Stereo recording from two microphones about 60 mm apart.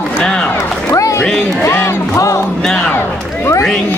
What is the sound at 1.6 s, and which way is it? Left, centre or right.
Speech, left.